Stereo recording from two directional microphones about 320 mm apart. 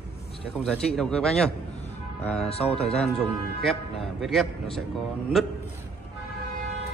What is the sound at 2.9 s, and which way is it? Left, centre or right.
A man's voice, centre.